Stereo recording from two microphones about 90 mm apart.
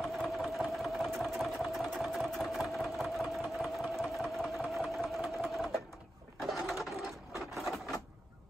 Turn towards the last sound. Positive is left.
turn(degrees=0)  # may be behind; listen again after turning